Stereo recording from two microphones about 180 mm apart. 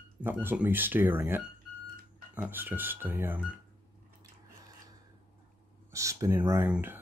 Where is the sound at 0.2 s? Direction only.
10° right (ahead or behind).